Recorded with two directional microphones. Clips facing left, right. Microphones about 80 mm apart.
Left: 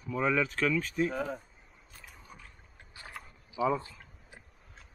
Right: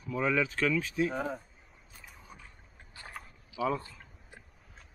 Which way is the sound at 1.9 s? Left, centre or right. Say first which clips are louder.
Even; centre.